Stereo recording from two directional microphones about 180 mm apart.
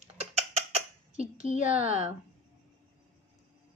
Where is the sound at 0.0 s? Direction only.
35° right (ahead or behind).